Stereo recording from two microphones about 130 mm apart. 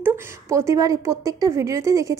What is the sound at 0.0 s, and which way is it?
A woman's voice, 20° right (ahead or behind).